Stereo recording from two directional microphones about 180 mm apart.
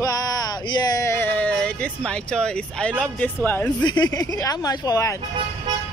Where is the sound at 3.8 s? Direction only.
25° left (ahead or behind).